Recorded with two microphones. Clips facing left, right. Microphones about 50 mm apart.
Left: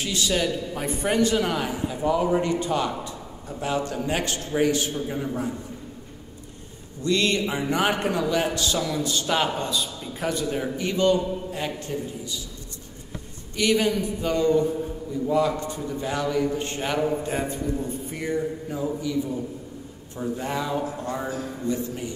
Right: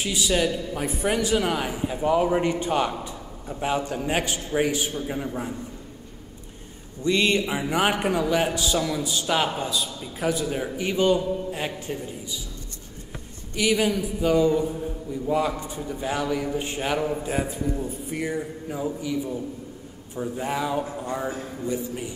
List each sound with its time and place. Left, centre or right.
0.0 s a man's voice: centre
2.2 s a man's voice: right
7.0 s a man's voice: centre
13.6 s a man's voice: centre
20.2 s a man's voice: centre